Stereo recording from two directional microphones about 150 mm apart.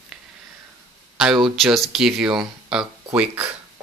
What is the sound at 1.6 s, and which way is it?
Speech, centre (ahead or behind).